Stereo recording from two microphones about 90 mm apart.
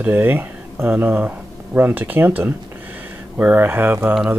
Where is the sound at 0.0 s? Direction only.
20° right (ahead or behind).